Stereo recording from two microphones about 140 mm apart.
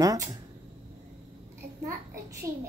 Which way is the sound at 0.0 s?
25° right (ahead or behind).